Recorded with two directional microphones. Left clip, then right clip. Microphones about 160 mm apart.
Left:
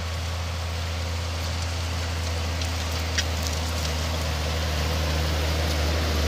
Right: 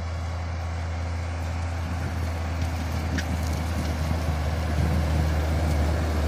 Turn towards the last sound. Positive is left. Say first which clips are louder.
# left 3 dB
turn(degrees=0)  # may be behind; listen again after turning